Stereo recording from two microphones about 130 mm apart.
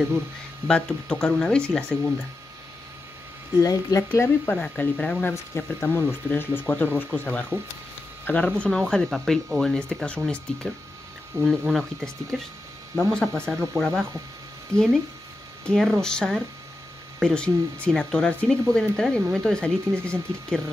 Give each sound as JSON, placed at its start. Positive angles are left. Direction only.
{"t": 0.7, "sound": "speech", "side_deg": 5}
{"t": 3.6, "sound": "speech", "side_deg": 25}
{"t": 4.6, "sound": "speech", "side_deg": 10}
{"t": 5.3, "sound": "speech", "side_deg": 20}
{"t": 14.7, "sound": "speech", "side_deg": -20}
{"t": 15.6, "sound": "speech", "side_deg": 5}